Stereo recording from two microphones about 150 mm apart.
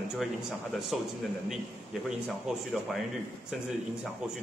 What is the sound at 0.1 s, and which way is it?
Speech, 5° right (ahead or behind).